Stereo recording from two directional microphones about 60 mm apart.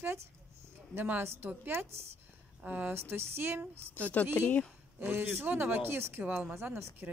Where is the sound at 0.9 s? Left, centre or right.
Right.